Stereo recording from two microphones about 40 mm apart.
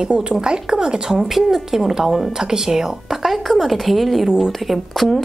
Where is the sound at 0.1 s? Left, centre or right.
Right.